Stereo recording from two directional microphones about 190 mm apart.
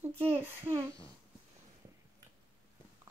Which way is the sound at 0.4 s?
15° right (ahead or behind).